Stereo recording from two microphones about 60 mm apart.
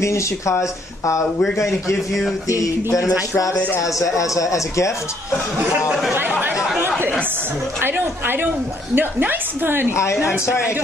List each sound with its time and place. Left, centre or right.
0.0 s speech: left
1.7 s a man's voice: centre
2.4 s speech: left
5.9 s a man's voice: centre
6.5 s chatter: centre
8.9 s a woman's voice: right
10.1 s a man's voice: centre
10.4 s a woman's voice: left